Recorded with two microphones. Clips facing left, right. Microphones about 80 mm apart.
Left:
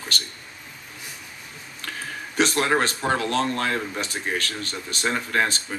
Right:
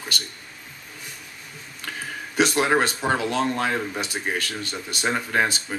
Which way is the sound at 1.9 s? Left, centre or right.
Centre.